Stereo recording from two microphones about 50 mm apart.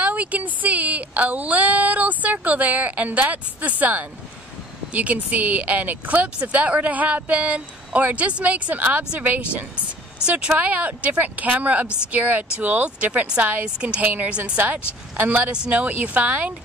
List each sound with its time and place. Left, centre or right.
0.0 s speech: right
10.2 s speech: right